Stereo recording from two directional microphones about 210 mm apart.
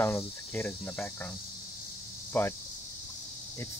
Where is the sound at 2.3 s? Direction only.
10° left (ahead or behind).